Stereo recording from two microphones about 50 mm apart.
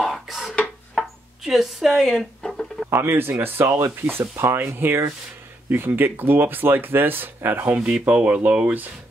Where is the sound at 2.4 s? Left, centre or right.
Centre.